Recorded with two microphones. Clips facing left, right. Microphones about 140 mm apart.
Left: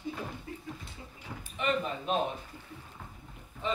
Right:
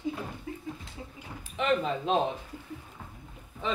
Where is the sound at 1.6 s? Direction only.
90° right.